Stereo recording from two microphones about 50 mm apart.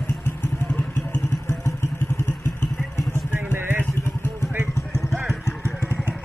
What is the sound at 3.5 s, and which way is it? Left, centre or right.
Vehicle, right.